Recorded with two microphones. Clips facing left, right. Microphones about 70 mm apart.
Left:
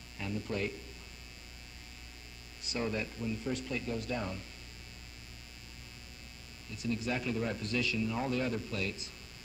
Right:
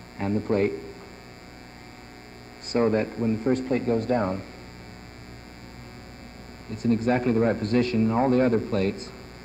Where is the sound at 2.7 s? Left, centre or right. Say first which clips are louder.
Right 13 dB; right.